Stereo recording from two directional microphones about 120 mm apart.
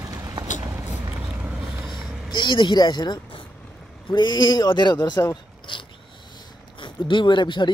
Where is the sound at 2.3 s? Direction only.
40° left (ahead or behind).